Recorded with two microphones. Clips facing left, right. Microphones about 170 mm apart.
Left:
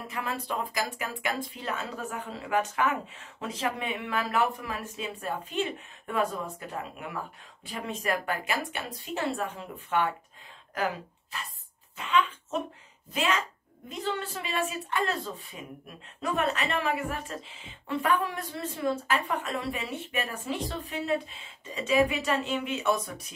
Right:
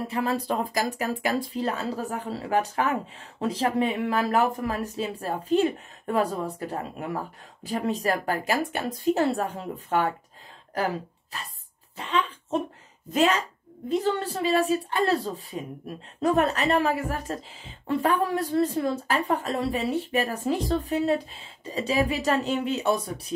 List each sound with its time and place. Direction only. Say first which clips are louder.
0.1 s speech: right 6 dB; 35° right (ahead or behind)
12.0 s a sound: even; 30° right (ahead or behind)
13.1 s speech: right 6 dB; 40° right (ahead or behind)